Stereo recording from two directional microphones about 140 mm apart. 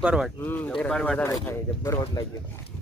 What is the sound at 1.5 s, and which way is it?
Speech, 20° left (ahead or behind).